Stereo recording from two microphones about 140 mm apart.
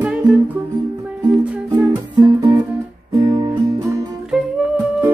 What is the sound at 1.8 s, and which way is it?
Music, 25° right (ahead or behind).